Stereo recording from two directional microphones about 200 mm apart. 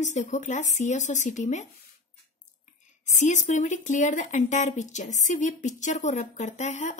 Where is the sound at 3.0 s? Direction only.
35° left (ahead or behind).